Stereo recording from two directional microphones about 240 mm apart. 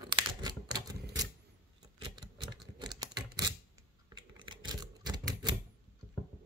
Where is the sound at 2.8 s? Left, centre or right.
Centre.